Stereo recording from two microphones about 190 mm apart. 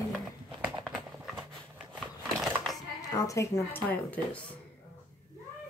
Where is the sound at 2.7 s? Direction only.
20° left (ahead or behind).